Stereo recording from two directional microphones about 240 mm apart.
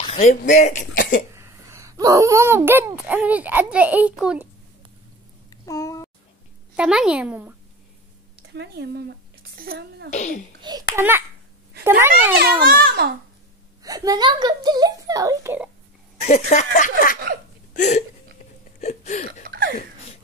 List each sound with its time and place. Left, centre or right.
0.0 s speech: left
1.3 s speech: centre
5.5 s a sound: centre
6.8 s speech: centre
8.5 s a child's voice: right
10.1 s speech: left
10.6 s a child's voice: centre
12.4 s a child's voice: right
13.8 s a child's voice: centre
16.2 s speech: left